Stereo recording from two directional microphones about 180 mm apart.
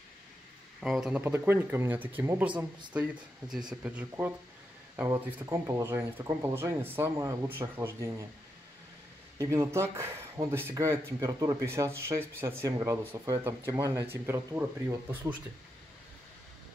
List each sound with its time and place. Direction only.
0.7 s speech: centre (ahead or behind)
9.4 s speech: 15° right (ahead or behind)